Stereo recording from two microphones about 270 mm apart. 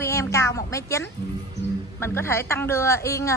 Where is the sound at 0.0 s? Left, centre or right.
Centre.